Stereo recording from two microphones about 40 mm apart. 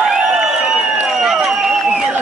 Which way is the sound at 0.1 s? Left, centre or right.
Centre.